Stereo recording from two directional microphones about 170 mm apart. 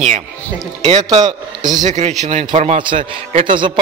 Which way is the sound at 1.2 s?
25° right (ahead or behind).